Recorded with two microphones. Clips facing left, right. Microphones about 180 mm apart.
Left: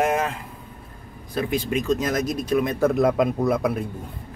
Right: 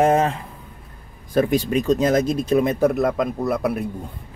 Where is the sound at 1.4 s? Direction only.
45° right (ahead or behind); by 2.8 s 25° right (ahead or behind).